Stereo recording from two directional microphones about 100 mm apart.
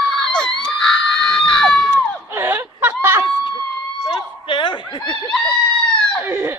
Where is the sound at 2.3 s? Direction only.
25° right (ahead or behind).